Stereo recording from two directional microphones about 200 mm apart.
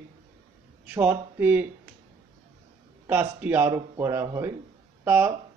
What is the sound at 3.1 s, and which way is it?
Speech, 10° right (ahead or behind).